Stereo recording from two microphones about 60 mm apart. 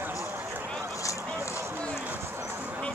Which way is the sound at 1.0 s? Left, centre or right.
Left.